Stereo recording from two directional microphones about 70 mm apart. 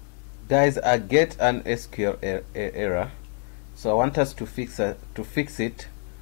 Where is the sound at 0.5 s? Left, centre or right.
Left.